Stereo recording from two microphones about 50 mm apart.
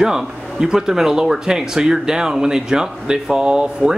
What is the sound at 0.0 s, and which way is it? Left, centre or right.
Speech, centre.